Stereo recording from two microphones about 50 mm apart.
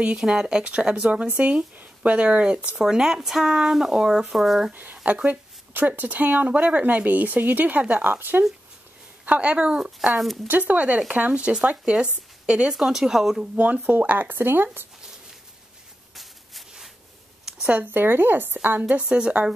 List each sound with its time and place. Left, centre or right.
0.2 s speech: centre
2.8 s speech: centre
5.0 s speech: right
9.2 s speech: right
9.8 s speech: centre
10.4 s speech: right; by 13.5 s centre
13.6 s speech: right
17.6 s speech: right
18.8 s speech: right
19.0 s speech: centre